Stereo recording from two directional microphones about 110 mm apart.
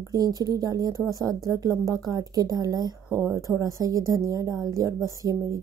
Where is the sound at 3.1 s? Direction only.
20° right (ahead or behind).